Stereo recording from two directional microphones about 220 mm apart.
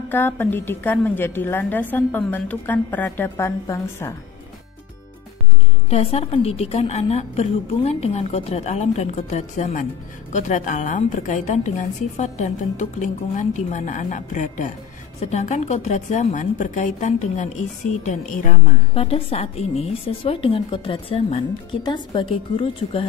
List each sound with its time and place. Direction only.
0.1 s a woman's voice: 10° left (ahead or behind)
5.9 s a woman's voice: 25° left (ahead or behind)
18.9 s a woman's voice: 25° left (ahead or behind)